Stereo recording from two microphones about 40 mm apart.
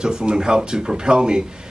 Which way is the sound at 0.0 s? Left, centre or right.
Right.